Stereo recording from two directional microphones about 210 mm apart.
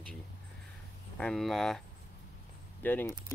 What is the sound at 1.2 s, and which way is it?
Speech, centre (ahead or behind).